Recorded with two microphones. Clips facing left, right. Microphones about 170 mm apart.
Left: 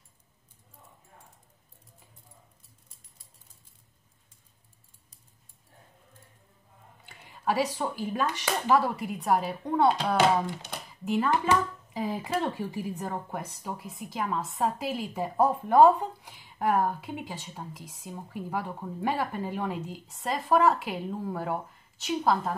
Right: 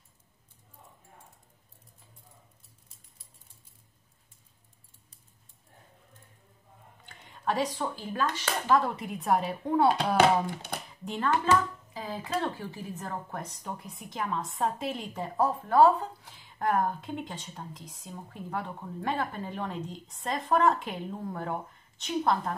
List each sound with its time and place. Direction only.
7.1 s speech: 5° left (ahead or behind)
10.1 s speech: 55° right (ahead or behind)
11.1 s speech: 10° left (ahead or behind)